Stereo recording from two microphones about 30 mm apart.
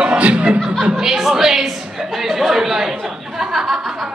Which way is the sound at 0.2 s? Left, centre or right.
Right.